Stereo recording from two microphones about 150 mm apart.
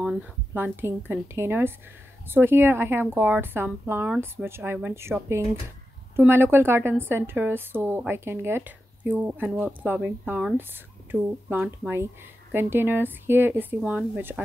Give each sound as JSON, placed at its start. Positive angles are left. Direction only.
{"t": 0.6, "sound": "a woman's voice", "side_deg": -15}